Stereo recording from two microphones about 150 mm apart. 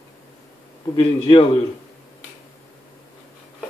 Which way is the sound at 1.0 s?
35° left (ahead or behind).